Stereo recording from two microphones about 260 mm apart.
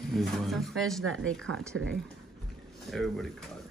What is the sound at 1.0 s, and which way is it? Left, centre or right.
Speech, right.